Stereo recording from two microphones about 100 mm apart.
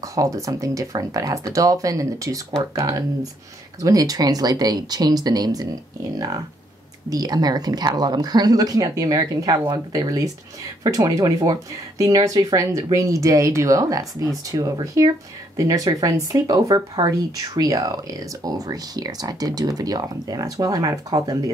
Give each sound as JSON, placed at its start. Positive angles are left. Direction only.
{"t": 0.0, "sound": "speech", "side_deg": -35}